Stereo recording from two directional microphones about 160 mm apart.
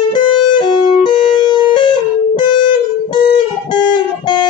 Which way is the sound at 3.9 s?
30° left (ahead or behind).